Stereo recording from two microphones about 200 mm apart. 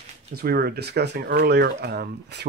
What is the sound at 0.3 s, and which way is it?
Speech, 50° right (ahead or behind).